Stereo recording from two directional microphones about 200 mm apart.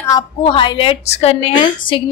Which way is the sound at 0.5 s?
25° left (ahead or behind).